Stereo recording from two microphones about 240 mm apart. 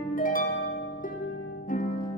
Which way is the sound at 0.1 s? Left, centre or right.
Left.